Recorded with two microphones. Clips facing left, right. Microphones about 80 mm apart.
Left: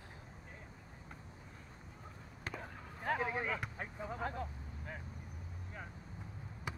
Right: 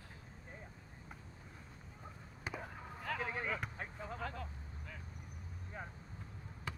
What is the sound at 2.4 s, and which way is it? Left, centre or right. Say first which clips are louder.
Basketball bounce: right 1 dB; centre.